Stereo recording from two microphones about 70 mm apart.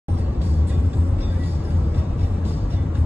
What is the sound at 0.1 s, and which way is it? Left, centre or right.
Vehicle, right.